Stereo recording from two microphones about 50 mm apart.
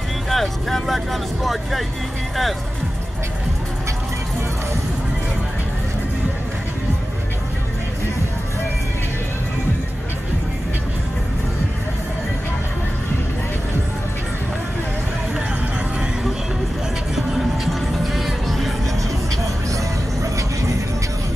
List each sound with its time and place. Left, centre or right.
0.3 s speech: centre
17.1 s music: centre
19.7 s music: right